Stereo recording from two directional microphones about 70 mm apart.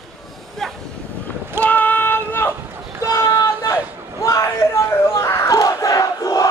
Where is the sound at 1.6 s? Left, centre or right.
Left.